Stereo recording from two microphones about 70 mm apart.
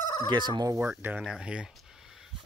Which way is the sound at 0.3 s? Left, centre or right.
Right.